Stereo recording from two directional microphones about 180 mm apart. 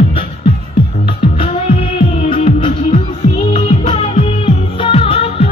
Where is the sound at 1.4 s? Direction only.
35° left (ahead or behind).